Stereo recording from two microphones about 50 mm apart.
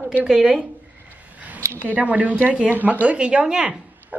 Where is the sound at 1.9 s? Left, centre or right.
Right; by 3.8 s centre.